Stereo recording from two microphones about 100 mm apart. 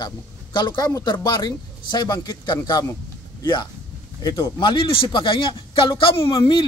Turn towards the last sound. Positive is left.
turn(degrees=60)  # may be behind; listen again after turning